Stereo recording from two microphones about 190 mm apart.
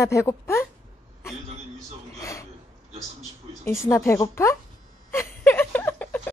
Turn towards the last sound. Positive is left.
turn(degrees=10)  # may be behind; listen again after turning